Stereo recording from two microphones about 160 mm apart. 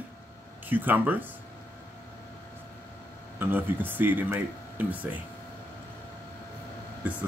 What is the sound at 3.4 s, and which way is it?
Speech, 10° right (ahead or behind).